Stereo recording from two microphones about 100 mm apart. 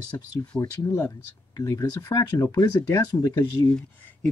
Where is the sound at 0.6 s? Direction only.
30° left (ahead or behind).